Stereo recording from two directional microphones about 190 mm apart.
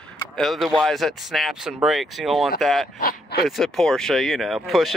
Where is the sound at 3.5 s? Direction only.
Centre (ahead or behind).